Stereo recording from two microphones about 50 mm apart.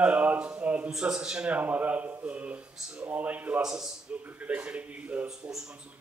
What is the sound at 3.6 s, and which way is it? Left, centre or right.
Speech, centre.